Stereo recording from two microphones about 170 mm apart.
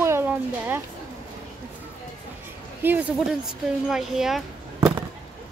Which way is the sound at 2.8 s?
10° right (ahead or behind).